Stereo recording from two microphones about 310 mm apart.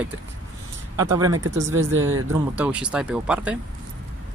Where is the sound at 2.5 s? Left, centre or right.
Centre.